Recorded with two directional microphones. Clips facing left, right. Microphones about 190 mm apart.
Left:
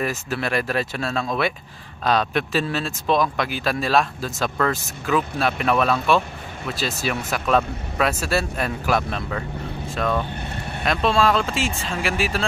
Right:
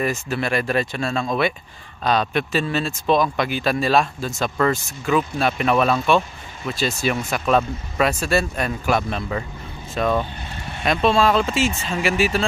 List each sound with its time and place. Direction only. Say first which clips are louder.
0.0 s speech: right 2 dB; centre (ahead or behind)
10.3 s vehicle: left 3 dB; 60° left (ahead or behind)
10.8 s speech: right 2 dB; centre (ahead or behind)